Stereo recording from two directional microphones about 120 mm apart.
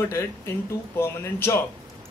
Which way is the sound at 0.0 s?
20° left (ahead or behind).